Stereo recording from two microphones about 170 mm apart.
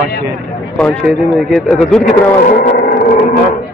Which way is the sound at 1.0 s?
5° left (ahead or behind).